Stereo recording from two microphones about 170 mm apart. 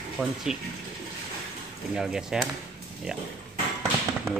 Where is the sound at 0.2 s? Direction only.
Centre (ahead or behind).